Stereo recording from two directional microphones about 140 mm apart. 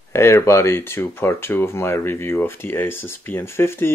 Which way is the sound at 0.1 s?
20° left (ahead or behind).